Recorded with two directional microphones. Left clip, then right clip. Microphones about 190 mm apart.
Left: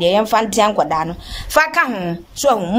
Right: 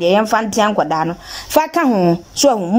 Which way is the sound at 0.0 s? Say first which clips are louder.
Even; 10° right (ahead or behind).